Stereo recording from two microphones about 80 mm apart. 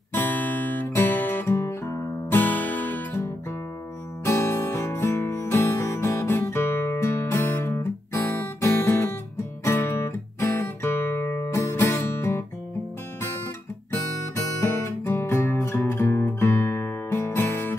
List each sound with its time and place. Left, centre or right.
0.1 s music: left
2.4 s music: left
14.3 s guitar: left
16.3 s music: left